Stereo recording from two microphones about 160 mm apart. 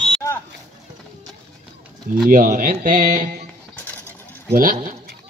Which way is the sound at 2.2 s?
60° right (ahead or behind).